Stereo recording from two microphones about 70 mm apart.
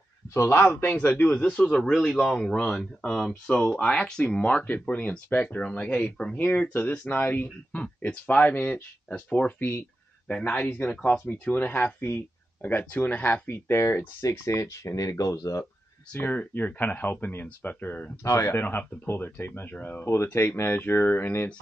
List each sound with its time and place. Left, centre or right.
0.3 s speech: left
1.0 s speech: left
10.3 s speech: centre; by 15.6 s left
16.1 s speech: left
18.2 s speech: left
18.6 s speech: left
20.3 s speech: left